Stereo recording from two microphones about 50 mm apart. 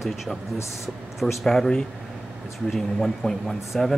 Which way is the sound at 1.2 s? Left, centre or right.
Centre.